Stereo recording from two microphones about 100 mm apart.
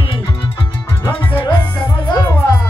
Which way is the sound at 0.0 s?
60° left (ahead or behind).